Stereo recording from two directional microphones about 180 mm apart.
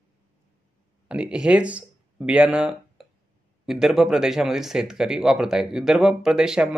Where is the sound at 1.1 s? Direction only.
5° right (ahead or behind).